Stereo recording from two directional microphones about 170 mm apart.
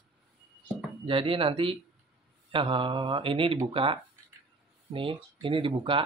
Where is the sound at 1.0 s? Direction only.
30° right (ahead or behind).